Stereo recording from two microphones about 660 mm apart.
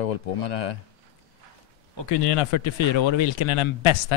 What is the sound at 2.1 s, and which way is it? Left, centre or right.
Speech, left.